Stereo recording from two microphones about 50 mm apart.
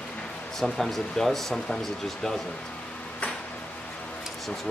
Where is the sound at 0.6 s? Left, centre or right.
Centre.